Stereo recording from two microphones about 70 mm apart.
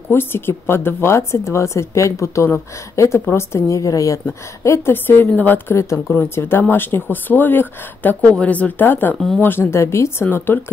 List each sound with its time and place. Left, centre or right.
0.1 s a woman's voice: left
4.9 s speech: left
5.7 s speech: left